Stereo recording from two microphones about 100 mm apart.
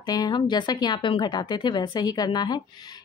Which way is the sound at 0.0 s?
40° left (ahead or behind).